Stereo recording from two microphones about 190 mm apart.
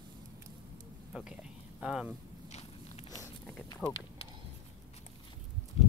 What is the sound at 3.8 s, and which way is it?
Speech, 5° left (ahead or behind).